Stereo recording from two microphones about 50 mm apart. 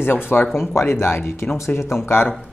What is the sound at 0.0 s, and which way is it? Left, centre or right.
Speech, left.